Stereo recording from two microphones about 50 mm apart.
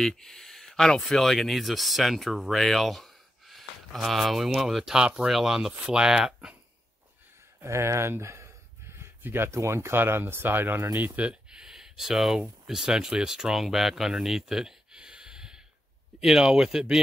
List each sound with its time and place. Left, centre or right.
0.0 s speech: centre
7.6 s speech: right
9.2 s speech: right
9.5 s speech: right
9.9 s speech: right
11.1 s a sound: right
11.6 s speech: centre